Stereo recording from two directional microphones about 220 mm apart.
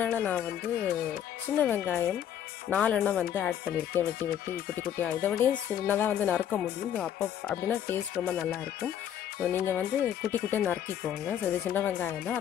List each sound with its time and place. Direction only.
0.0 s speech: 5° left (ahead or behind)